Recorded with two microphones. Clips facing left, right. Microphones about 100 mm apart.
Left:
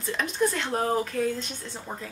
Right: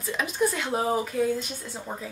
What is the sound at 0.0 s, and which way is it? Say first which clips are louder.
Speech: even; 5° right (ahead or behind).